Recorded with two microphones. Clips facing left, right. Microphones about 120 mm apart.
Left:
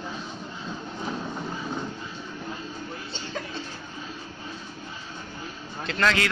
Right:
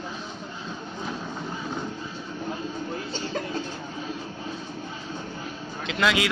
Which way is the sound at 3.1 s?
45° right (ahead or behind).